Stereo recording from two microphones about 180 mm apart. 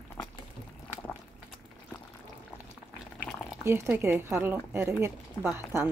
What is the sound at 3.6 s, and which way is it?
Speech, 15° right (ahead or behind).